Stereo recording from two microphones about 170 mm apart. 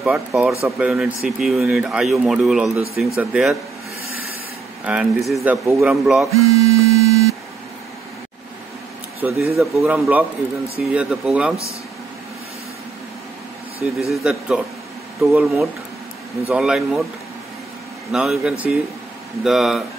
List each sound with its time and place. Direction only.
0.0 s speech: 5° right (ahead or behind)
4.8 s speech: 5° right (ahead or behind)
6.3 s a sound: 20° right (ahead or behind)
9.2 s speech: 10° right (ahead or behind)
13.8 s speech: centre (ahead or behind)
18.1 s speech: 5° right (ahead or behind)